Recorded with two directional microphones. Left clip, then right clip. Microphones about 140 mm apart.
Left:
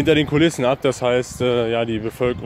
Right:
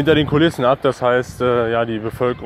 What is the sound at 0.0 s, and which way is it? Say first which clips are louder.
Speech: right 2 dB; 15° left (ahead or behind).